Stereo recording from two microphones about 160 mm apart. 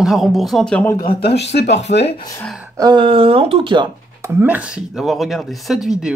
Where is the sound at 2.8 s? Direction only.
30° right (ahead or behind).